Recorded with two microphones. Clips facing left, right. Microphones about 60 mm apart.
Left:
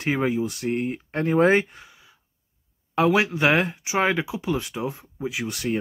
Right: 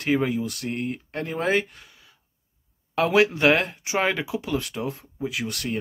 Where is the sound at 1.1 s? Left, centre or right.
Left.